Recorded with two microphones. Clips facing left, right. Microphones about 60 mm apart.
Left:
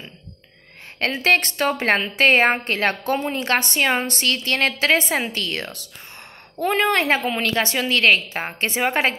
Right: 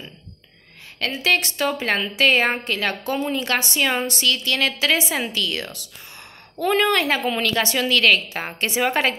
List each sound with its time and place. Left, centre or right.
0.9 s a woman's voice: left
6.6 s a woman's voice: left